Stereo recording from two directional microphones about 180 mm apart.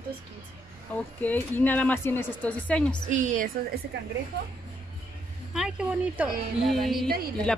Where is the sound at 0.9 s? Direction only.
10° left (ahead or behind).